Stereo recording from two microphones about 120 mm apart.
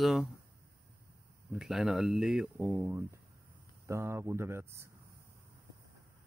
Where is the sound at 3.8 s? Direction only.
20° right (ahead or behind).